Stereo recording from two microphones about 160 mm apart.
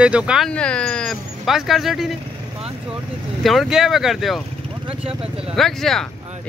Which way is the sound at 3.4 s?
Centre (ahead or behind).